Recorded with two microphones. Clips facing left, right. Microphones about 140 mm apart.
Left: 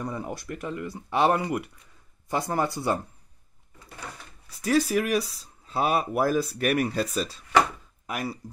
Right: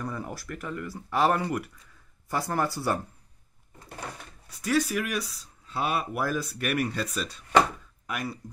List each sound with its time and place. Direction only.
0.0 s speech: 20° left (ahead or behind)
4.6 s speech: 35° left (ahead or behind)